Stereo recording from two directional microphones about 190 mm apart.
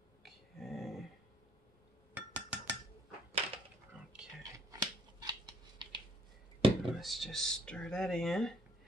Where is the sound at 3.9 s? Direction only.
5° right (ahead or behind).